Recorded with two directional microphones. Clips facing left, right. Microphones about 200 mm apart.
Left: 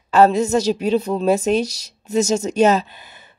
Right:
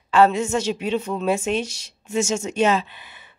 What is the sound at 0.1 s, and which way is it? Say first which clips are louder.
Speech: left 3 dB; 40° left (ahead or behind).